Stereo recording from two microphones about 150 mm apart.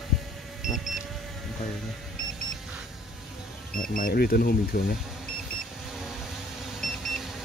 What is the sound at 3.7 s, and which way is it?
Speech, 70° left (ahead or behind).